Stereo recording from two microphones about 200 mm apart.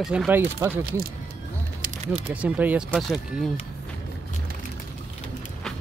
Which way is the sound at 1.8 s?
35° right (ahead or behind).